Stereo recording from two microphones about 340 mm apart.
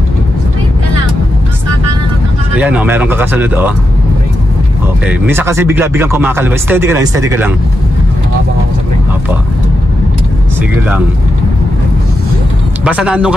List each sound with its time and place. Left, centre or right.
2.5 s speech: centre
5.0 s speech: centre
12.8 s speech: centre